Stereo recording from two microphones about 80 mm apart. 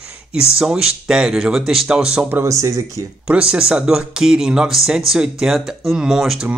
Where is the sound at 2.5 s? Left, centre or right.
Right.